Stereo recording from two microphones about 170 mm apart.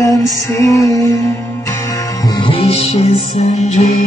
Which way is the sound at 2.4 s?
35° left (ahead or behind).